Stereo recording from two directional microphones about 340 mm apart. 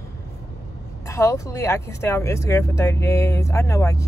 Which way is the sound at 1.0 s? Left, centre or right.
Centre.